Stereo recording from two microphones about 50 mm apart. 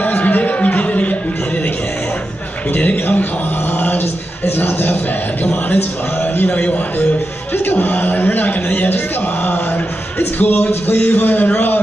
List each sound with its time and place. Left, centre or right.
0.0 s a sound: left
2.7 s a man's voice: left
4.5 s a man's voice: left
10.1 s music: left
11.0 s a man's voice: left